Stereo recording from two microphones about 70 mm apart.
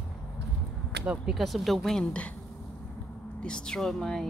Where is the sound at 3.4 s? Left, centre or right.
Centre.